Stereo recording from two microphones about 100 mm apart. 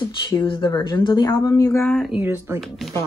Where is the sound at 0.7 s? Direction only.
45° left (ahead or behind).